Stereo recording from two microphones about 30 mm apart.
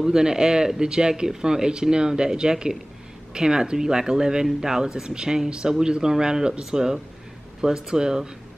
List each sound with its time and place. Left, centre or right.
0.0 s speech: right